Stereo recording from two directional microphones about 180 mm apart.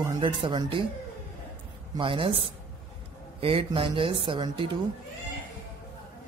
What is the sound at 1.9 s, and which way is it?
Speech, 30° right (ahead or behind).